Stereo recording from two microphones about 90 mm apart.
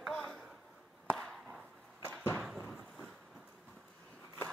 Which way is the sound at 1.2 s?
5° right (ahead or behind).